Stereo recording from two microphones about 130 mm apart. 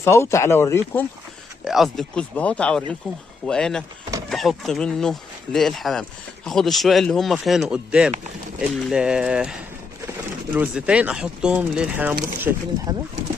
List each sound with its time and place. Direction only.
0.0 s speech: 20° left (ahead or behind)
1.6 s speech: centre (ahead or behind)
12.9 s speech: 30° right (ahead or behind)